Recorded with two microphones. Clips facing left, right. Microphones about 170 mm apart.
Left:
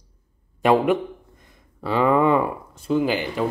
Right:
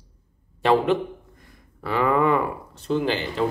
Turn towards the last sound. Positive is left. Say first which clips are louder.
# left 2 dB
turn(degrees=10)  # may be behind; listen again after turning